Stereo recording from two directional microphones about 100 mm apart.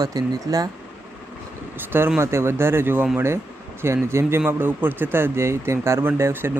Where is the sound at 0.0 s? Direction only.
40° right (ahead or behind).